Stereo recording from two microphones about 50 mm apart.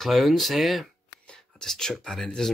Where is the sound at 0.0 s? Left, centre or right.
Centre.